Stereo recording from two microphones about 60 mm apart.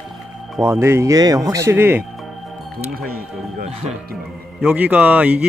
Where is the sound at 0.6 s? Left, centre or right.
Right.